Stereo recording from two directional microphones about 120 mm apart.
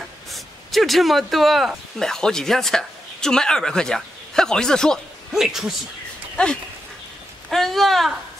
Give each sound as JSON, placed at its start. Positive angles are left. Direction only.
{"t": 0.3, "sound": "speech", "side_deg": 0}
{"t": 6.3, "sound": "speech", "side_deg": 5}
{"t": 7.4, "sound": "a sound", "side_deg": 0}